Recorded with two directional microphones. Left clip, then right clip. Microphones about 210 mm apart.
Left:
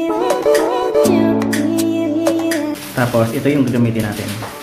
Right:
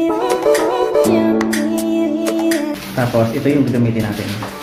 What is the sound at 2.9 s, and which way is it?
Speech, 10° left (ahead or behind).